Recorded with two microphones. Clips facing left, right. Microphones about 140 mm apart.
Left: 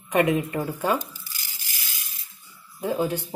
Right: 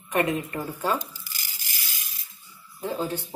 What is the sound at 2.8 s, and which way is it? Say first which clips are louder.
Speech: left 4 dB; 15° left (ahead or behind).